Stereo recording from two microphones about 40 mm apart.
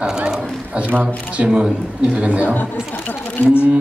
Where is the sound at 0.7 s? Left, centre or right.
Right.